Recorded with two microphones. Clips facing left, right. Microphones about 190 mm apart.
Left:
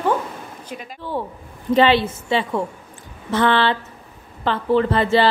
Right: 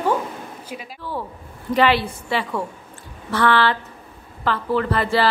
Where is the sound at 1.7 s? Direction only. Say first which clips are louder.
Left 2 dB; 25° left (ahead or behind).